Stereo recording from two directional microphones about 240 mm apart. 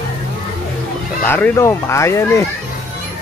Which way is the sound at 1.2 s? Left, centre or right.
Centre.